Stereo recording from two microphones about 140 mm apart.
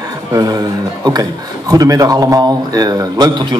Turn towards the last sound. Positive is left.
turn(degrees=-30)  # may be behind; listen again after turning